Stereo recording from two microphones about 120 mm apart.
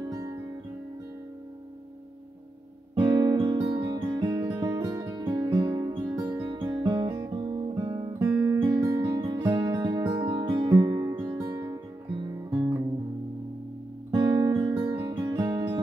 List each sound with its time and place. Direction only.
0.1 s music: 30° right (ahead or behind)
2.9 s guitar: 40° right (ahead or behind)
4.5 s music: 40° right (ahead or behind)
7.1 s guitar: 30° right (ahead or behind)
10.8 s music: 35° right (ahead or behind)
11.5 s music: 25° right (ahead or behind)
12.4 s guitar: 25° right (ahead or behind)
14.1 s guitar: 35° right (ahead or behind)
14.8 s music: 35° right (ahead or behind)
15.4 s music: 45° right (ahead or behind)